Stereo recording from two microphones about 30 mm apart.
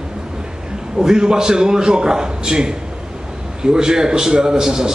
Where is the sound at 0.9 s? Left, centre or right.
Centre.